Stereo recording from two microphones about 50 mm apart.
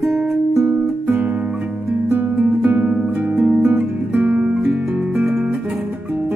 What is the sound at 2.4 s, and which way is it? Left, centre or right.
Music, centre.